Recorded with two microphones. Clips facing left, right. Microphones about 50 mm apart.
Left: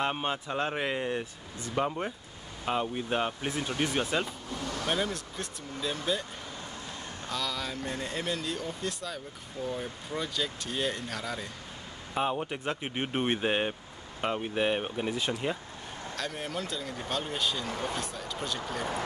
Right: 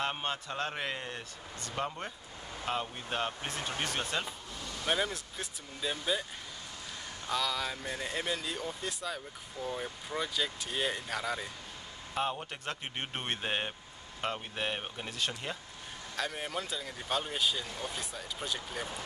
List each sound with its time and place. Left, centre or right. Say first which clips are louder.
0.0 s speech: left 4 dB; centre
4.8 s speech: even; centre
7.2 s speech: right 1 dB; centre
12.1 s speech: left 4 dB; centre
16.2 s speech: even; centre
17.6 s speech: left 6 dB; left
18.1 s speech: left 3 dB; centre